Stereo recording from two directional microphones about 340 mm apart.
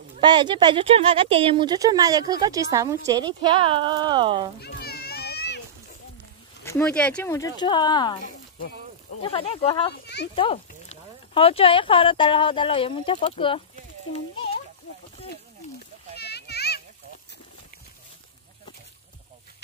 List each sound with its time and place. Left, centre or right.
0.1 s speech: centre
4.6 s children playing: left
6.6 s speech: centre
10.0 s a sound: left
10.3 s a child's voice: centre
16.2 s children playing: left